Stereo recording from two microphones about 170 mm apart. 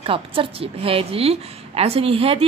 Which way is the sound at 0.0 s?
30° right (ahead or behind).